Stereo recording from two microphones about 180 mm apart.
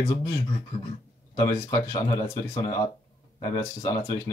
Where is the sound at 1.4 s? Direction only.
20° left (ahead or behind).